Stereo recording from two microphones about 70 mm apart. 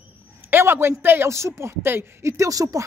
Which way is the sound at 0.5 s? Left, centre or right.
Right.